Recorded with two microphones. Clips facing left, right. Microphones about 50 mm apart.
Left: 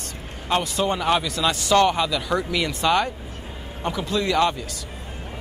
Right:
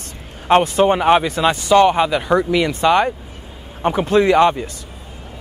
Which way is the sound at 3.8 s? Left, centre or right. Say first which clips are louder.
Right 10 dB; right.